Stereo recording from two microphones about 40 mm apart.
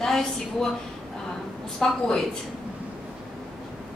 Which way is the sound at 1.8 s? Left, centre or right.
Centre.